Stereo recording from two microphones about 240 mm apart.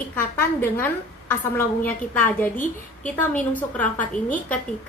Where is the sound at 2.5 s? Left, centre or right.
Left.